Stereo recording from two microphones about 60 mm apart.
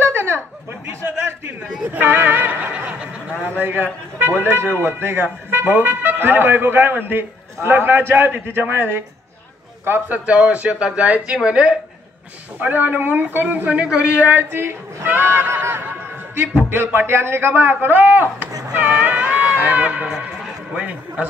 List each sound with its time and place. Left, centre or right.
0.0 s a sound: right
1.6 s a sound: right
3.4 s a man's voice: right; by 11.7 s centre
12.5 s a man's voice: right
14.2 s a man's voice: right
15.6 s a sound: right
16.6 s a man's voice: right
20.1 s a man's voice: centre
20.7 s speech: right